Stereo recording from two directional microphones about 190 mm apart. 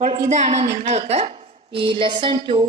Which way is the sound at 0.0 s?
35° right (ahead or behind).